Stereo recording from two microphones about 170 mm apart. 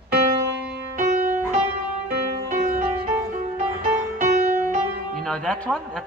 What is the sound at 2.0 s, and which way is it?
Music, 60° right (ahead or behind).